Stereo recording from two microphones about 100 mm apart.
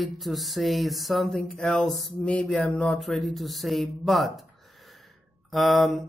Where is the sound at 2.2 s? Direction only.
10° left (ahead or behind).